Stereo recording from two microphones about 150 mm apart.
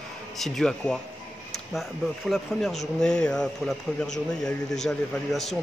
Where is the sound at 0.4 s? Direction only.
5° left (ahead or behind).